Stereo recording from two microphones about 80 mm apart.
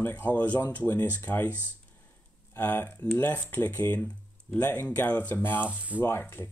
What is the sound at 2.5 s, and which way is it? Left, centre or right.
Speech, left.